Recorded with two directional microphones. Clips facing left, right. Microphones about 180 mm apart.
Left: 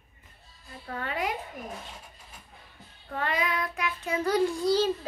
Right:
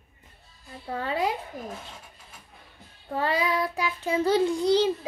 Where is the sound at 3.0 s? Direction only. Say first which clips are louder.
Right 4 dB; 30° right (ahead or behind).